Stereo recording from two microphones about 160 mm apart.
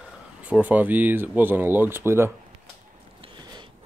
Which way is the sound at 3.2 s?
30° right (ahead or behind).